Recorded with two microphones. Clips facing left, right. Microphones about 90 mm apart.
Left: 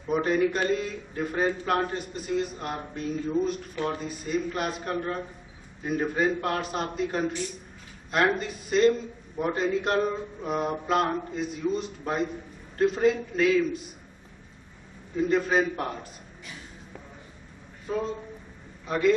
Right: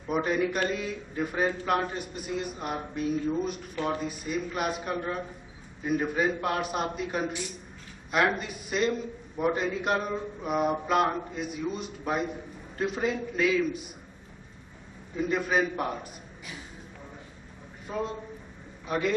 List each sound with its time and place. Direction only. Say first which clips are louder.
0.1 s a man's voice: left 3 dB; 5° right (ahead or behind)
15.1 s a man's voice: left 3 dB; 5° right (ahead or behind)
18.9 s a man's voice: left 5 dB; centre (ahead or behind)